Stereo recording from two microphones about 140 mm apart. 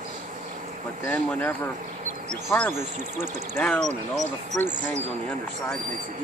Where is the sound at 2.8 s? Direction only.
55° right (ahead or behind).